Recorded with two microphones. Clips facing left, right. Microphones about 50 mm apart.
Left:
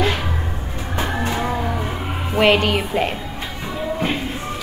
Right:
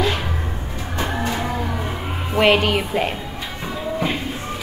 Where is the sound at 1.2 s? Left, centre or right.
Centre.